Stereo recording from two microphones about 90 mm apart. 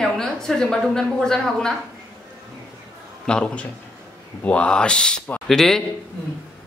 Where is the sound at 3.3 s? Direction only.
10° left (ahead or behind).